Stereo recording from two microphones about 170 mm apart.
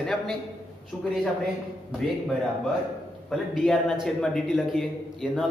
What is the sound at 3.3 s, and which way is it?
A man's voice, centre (ahead or behind).